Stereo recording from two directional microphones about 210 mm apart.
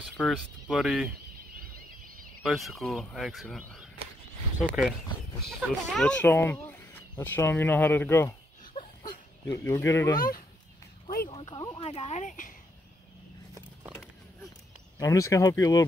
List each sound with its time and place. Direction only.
0.2 s speech: centre (ahead or behind)
1.6 s squeal: 40° right (ahead or behind)
2.4 s speech: centre (ahead or behind)
8.7 s a sound: 15° left (ahead or behind)
10.1 s speech: 45° left (ahead or behind)
11.2 s speech: 20° left (ahead or behind)
11.8 s speech: 30° left (ahead or behind)
15.0 s speech: 15° left (ahead or behind)